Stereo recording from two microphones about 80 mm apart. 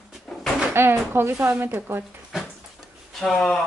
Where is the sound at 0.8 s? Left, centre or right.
Right.